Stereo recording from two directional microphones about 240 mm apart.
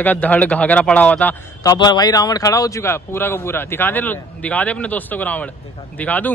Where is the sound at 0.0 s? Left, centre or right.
Centre.